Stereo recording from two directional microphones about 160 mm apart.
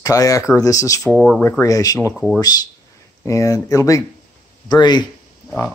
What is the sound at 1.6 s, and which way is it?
Speech, 20° left (ahead or behind).